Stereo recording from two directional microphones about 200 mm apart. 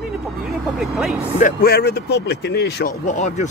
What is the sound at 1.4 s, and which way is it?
Speech, 50° left (ahead or behind).